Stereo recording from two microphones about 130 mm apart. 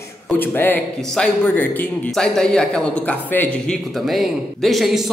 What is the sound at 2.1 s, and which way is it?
A man's voice, 5° left (ahead or behind).